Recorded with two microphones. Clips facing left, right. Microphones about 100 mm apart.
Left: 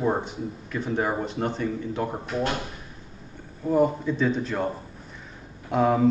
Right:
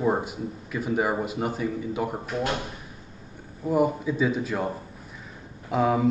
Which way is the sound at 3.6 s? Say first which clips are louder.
Left 1 dB; 5° right (ahead or behind).